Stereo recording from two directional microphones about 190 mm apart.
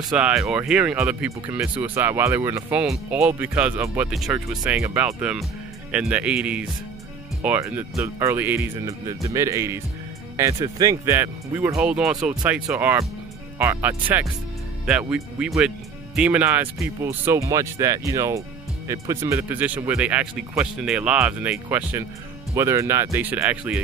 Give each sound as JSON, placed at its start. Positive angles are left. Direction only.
{"t": 0.0, "sound": "speech", "side_deg": 0}